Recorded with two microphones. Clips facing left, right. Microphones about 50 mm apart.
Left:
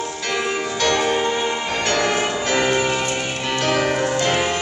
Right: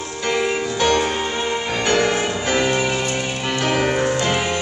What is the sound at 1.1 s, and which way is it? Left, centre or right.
Music, centre.